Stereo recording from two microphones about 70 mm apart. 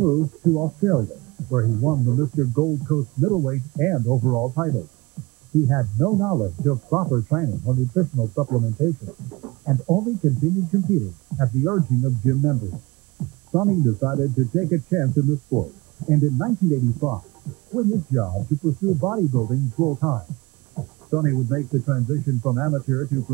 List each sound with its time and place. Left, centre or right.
0.2 s speech: centre
5.2 s hum: centre
5.7 s speech: centre